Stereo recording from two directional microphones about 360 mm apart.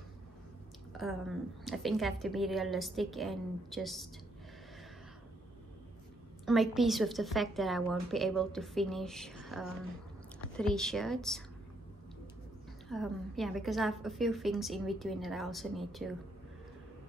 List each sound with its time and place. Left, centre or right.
0.9 s a woman's voice: centre
6.4 s a woman's voice: centre
12.8 s a woman's voice: centre